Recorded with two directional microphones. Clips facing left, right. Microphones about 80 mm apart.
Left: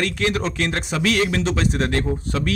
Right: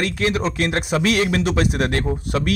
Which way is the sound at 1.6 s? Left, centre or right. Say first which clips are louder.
Right 1 dB; right.